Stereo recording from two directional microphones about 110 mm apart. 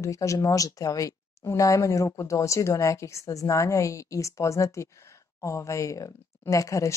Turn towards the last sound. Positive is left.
turn(degrees=30)  # may be behind; listen again after turning